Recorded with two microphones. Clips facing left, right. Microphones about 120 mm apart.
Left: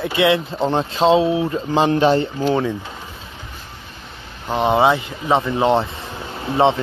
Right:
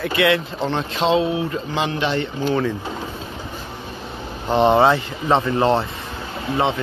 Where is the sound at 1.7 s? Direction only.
40° left (ahead or behind).